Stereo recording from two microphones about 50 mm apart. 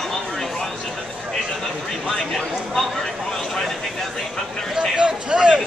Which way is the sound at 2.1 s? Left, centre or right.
Centre.